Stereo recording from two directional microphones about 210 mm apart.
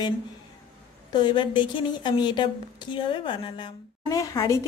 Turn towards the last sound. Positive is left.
turn(degrees=15)  # may be behind; listen again after turning